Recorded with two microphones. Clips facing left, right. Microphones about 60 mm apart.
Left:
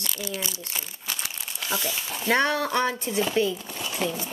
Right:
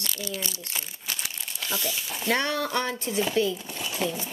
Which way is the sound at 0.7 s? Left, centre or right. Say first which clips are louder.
Left 1 dB; centre.